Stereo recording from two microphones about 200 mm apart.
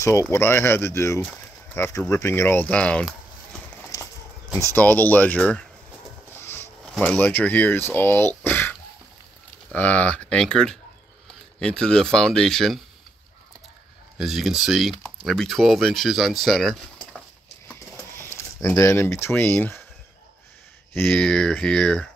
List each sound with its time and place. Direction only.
0.0 s speech: 15° left (ahead or behind)
3.8 s horse: 15° left (ahead or behind)
4.6 s speech: 10° left (ahead or behind)
14.1 s speech: centre (ahead or behind)
18.2 s speech: 10° left (ahead or behind)
20.9 s speech: 5° left (ahead or behind)